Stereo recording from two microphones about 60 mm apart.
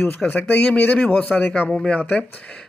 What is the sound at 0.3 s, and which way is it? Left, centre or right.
Speech, left.